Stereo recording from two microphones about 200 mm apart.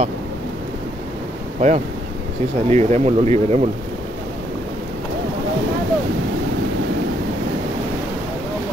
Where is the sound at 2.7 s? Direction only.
35° right (ahead or behind).